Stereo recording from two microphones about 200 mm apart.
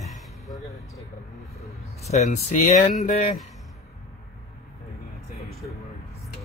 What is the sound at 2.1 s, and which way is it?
Speech, 35° left (ahead or behind).